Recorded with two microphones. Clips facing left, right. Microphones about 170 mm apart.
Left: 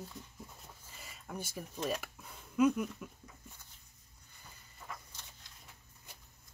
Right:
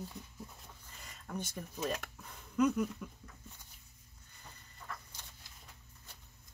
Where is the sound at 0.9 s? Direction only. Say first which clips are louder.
Right 2 dB; 5° left (ahead or behind).